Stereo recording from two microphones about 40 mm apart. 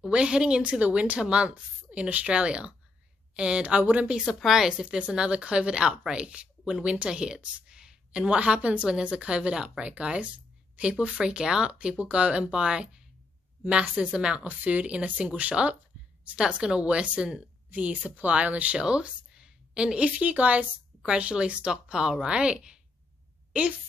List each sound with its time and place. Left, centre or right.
0.0 s speech: right
1.2 s speech: right
2.0 s speech: right
2.3 s speech: right
4.3 s speech: centre
4.8 s speech: right; by 8.0 s centre
8.1 s speech: right
11.1 s speech: right
14.4 s speech: right
16.3 s speech: right
17.6 s speech: right
18.8 s a sound: right
20.0 s a woman's voice: right